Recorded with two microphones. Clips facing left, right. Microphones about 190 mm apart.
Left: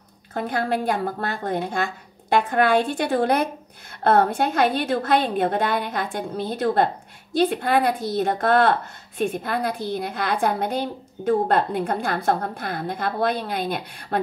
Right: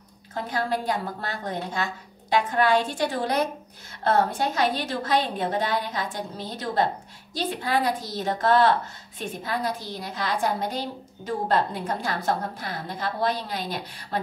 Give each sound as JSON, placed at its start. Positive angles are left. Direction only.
{"t": 0.3, "sound": "a woman's voice", "side_deg": 55}